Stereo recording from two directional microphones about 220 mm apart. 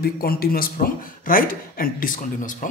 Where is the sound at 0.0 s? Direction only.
45° left (ahead or behind).